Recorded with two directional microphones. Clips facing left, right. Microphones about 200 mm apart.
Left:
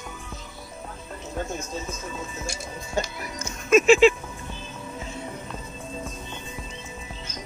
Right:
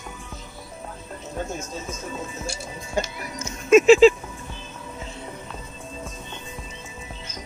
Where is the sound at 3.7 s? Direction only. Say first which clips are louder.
Right 4 dB; 30° right (ahead or behind).